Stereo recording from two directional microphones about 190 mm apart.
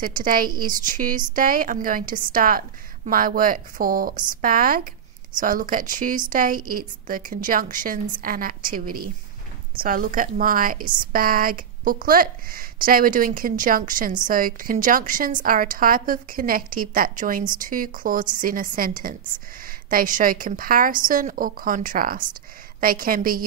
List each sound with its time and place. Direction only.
0.0 s a woman's voice: 45° right (ahead or behind)